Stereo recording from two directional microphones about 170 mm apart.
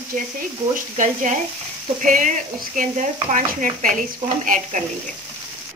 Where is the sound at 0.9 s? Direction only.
45° right (ahead or behind).